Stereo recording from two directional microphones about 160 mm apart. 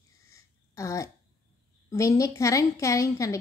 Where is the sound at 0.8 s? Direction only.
20° left (ahead or behind).